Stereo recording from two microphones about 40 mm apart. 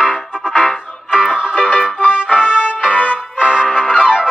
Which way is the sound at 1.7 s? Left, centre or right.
Left.